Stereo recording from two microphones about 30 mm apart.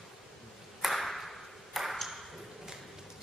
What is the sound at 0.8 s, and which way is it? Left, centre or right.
Ping, centre.